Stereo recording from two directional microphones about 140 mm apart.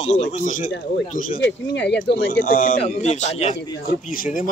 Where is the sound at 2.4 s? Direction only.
80° left; by 3.5 s 50° left (ahead or behind).